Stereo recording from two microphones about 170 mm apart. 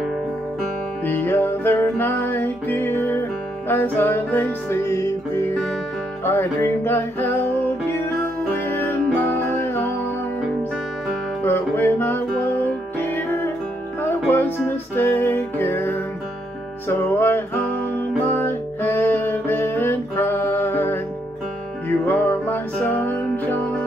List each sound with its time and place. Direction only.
1.0 s music: 10° left (ahead or behind)
8.6 s music: 10° left (ahead or behind)
11.4 s music: 10° left (ahead or behind)